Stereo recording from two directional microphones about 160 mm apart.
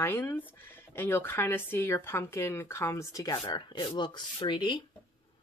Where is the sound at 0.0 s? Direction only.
15° left (ahead or behind); by 4.8 s 30° left (ahead or behind).